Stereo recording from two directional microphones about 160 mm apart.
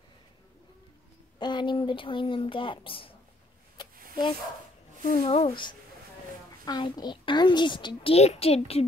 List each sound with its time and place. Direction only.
1.4 s a child's voice: 30° left (ahead or behind)
3.9 s a sound: 60° right (ahead or behind)
5.2 s a child's voice: 35° left (ahead or behind)